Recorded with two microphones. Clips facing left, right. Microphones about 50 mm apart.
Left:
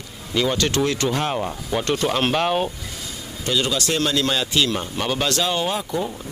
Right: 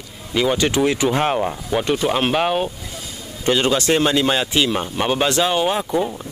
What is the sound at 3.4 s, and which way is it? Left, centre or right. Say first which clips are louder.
Speech: right 5 dB; right.